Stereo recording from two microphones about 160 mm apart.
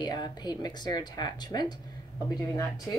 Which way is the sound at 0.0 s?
25° left (ahead or behind).